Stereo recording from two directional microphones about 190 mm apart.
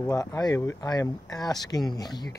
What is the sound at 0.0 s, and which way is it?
Speech, 15° left (ahead or behind).